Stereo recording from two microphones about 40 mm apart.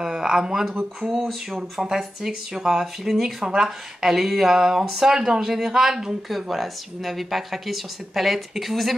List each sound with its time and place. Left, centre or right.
0.0 s speech: centre
1.8 s speech: centre